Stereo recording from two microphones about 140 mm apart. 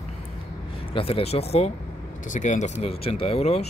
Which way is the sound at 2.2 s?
60° left (ahead or behind).